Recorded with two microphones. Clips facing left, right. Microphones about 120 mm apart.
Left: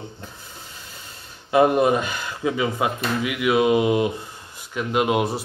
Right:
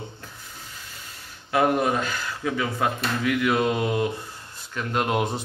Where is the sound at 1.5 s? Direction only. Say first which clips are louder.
Left 5 dB; 20° left (ahead or behind).